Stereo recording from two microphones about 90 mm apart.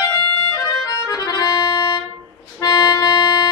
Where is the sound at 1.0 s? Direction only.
40° left (ahead or behind).